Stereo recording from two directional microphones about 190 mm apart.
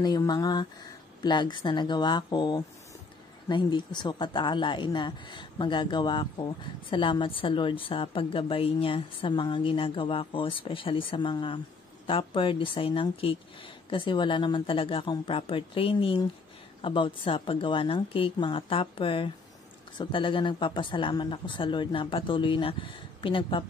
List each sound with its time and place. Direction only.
0.0 s speech: 20° left (ahead or behind)